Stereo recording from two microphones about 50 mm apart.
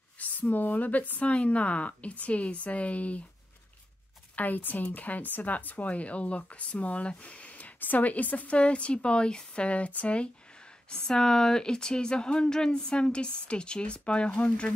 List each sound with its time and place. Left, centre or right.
0.2 s speech: left
4.4 s speech: left